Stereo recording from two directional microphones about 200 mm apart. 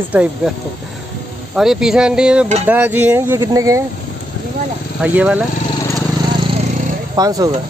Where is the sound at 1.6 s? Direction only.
Centre (ahead or behind).